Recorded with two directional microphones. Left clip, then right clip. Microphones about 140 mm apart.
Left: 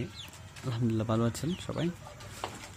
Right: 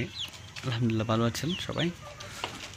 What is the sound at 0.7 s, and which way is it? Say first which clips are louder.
Speech: right 3 dB; 10° left (ahead or behind).